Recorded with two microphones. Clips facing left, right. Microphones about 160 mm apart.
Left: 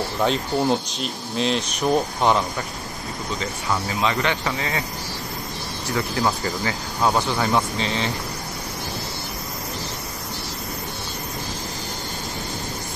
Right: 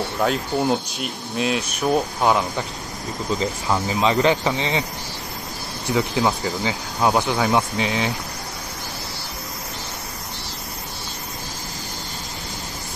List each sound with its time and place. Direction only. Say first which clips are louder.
0.2 s speech: even; 5° right (ahead or behind)
4.0 s speech: right 7 dB; 30° right (ahead or behind)
5.9 s speech: right 2 dB; 15° right (ahead or behind)